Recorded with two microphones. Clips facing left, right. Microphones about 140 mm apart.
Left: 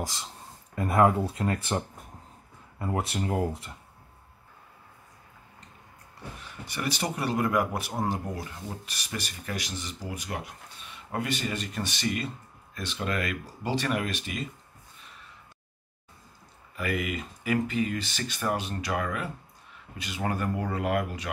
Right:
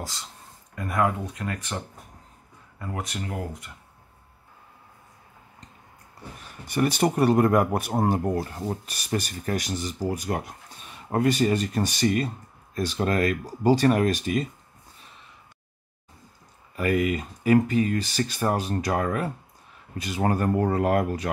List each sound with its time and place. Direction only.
0.0 s speech: 20° left (ahead or behind)
2.8 s speech: 30° left (ahead or behind)
6.4 s speech: 45° right (ahead or behind)
16.7 s speech: 40° right (ahead or behind)